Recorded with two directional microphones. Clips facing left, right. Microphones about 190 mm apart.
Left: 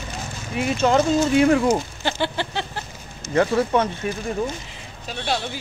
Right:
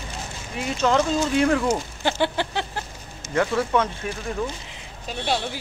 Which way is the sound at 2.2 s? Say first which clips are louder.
Right 1 dB; 15° right (ahead or behind).